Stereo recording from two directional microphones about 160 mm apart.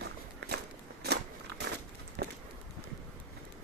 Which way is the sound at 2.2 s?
90° right.